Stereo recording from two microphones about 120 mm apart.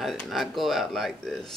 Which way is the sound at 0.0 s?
Centre (ahead or behind).